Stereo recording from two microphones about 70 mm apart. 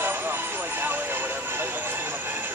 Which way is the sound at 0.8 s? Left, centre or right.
Right.